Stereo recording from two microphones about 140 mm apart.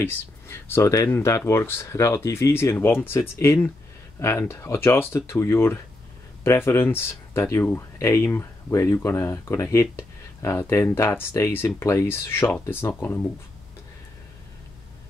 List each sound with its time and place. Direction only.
0.0 s speech: 15° left (ahead or behind)